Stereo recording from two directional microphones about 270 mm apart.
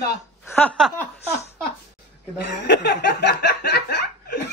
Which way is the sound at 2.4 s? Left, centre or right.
Left.